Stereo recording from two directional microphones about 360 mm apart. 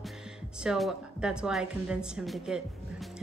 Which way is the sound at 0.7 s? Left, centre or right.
Centre.